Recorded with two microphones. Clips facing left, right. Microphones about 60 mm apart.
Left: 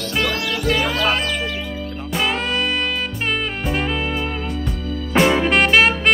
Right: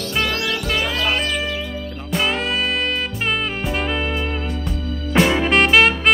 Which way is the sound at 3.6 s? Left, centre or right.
Centre.